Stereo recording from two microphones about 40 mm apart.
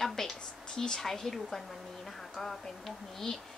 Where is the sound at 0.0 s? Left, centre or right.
Centre.